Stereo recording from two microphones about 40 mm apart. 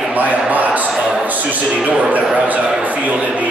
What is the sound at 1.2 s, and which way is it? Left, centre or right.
A man's voice, right.